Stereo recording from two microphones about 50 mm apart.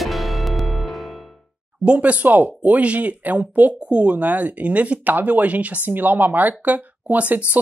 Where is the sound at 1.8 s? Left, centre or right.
Right.